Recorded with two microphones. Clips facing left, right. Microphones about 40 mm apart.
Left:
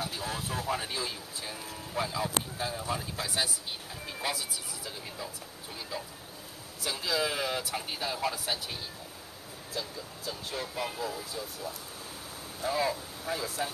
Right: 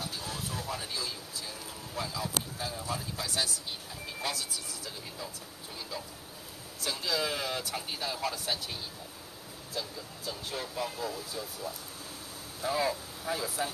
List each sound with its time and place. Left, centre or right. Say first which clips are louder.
0.0 s vehicle: left 3 dB; centre
0.7 s speech: left 4 dB; left
6.8 s speech: left 1 dB; centre
9.8 s speech: even; centre